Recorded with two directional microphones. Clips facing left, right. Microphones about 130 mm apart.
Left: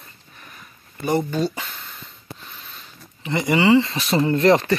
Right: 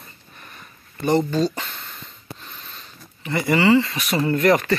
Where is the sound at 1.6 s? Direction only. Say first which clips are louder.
Right 1 dB; centre (ahead or behind).